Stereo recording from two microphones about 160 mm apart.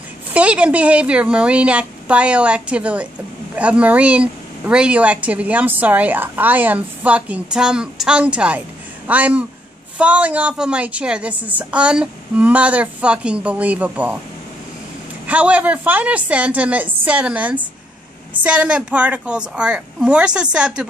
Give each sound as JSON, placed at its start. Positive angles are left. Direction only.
{"t": 0.3, "sound": "a woman's voice", "side_deg": -10}
{"t": 15.2, "sound": "a woman's voice", "side_deg": -10}